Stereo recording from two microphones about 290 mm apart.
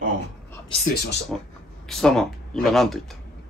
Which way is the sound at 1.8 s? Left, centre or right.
Centre.